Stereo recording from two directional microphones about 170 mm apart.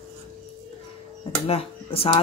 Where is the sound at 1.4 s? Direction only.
35° left (ahead or behind).